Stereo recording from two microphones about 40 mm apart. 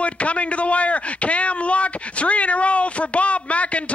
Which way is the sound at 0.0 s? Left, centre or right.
Left.